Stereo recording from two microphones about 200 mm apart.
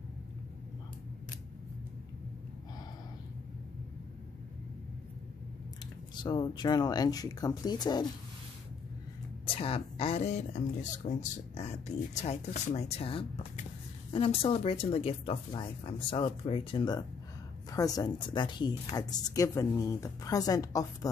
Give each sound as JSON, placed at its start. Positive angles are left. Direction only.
{"t": 6.1, "sound": "speech", "side_deg": 20}
{"t": 9.6, "sound": "speech", "side_deg": 30}